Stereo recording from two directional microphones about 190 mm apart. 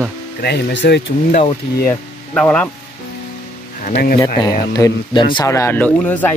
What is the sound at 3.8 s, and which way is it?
Speech, 50° left (ahead or behind).